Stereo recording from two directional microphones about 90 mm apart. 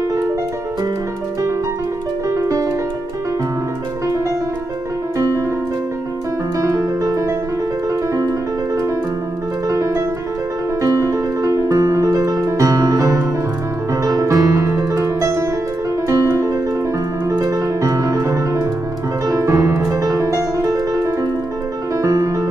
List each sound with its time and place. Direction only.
2.2 s music: 35° right (ahead or behind)
6.6 s music: 40° right (ahead or behind)